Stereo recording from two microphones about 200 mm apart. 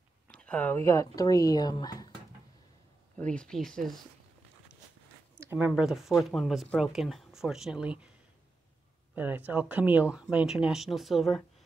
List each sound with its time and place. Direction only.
0.3 s speech: 5° left (ahead or behind)
3.2 s speech: 5° left (ahead or behind)
5.4 s a sound: 10° right (ahead or behind)
5.7 s speech: centre (ahead or behind)
9.1 s speech: 10° right (ahead or behind)